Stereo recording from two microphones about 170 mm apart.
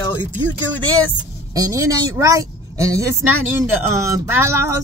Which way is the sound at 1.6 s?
20° right (ahead or behind).